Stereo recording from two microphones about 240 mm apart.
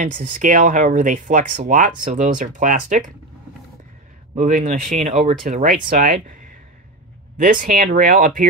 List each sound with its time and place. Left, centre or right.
0.0 s speech: right
4.4 s speech: right